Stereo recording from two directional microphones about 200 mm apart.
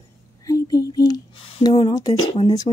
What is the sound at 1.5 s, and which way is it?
Speech, 25° left (ahead or behind).